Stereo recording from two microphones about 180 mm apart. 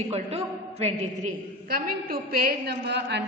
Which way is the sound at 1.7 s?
55° right (ahead or behind).